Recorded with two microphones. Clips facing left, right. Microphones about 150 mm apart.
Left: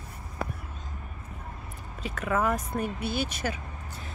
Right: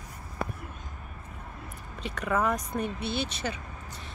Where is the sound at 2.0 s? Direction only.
5° left (ahead or behind).